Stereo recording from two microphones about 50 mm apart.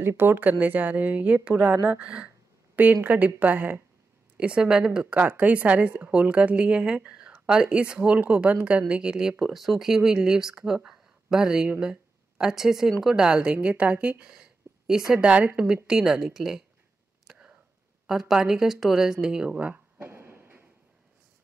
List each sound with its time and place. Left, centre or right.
0.0 s speech: right
0.4 s a woman's voice: right
2.7 s a woman's voice: right
4.4 s speech: centre
5.3 s a woman's voice: right; by 9.3 s centre
9.4 s a woman's voice: centre; by 14.1 s right
14.2 s a woman's voice: centre
17.3 s a sound: centre
18.3 s speech: centre
19.5 s a woman's voice: right
20.0 s a sound: right